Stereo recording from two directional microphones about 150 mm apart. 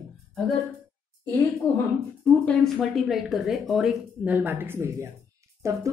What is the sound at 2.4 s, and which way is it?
Speech, centre (ahead or behind).